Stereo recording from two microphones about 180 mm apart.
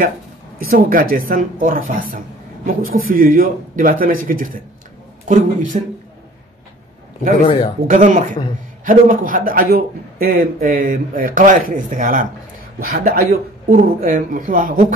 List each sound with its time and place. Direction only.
0.7 s speech: 50° right (ahead or behind)
7.9 s speech: 45° right (ahead or behind)